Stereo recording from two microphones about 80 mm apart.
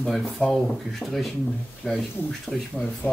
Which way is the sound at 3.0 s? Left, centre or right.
Left.